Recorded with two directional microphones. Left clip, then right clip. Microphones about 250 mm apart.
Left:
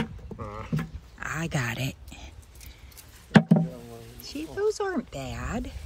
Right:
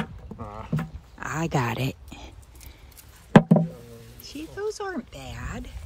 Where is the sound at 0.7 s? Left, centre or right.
Right.